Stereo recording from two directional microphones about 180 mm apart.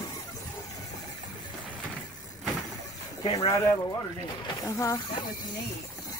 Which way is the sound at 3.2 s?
35° left (ahead or behind).